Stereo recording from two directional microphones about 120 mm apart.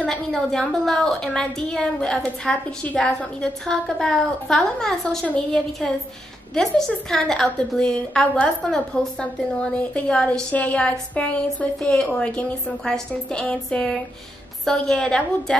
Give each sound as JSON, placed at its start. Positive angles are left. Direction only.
{"t": 0.0, "sound": "a woman's voice", "side_deg": 5}